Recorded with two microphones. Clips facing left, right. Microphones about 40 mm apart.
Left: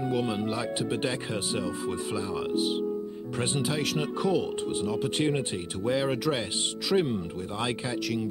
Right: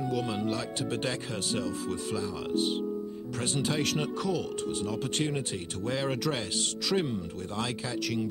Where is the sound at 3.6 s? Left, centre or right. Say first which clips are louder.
Left 1 dB; centre.